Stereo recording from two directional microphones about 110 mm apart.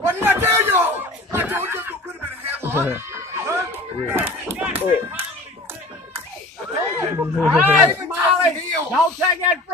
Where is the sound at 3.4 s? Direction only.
20° right (ahead or behind).